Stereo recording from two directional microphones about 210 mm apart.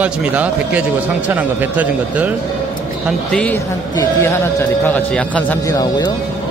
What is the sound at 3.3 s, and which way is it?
A man's voice, 5° left (ahead or behind).